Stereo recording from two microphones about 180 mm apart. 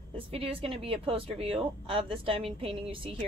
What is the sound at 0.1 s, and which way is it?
A woman's voice, 30° right (ahead or behind).